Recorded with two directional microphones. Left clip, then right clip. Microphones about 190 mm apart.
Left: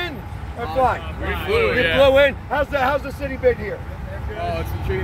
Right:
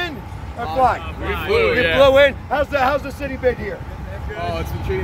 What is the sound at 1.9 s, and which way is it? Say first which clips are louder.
Speech: right 2 dB; 15° left (ahead or behind).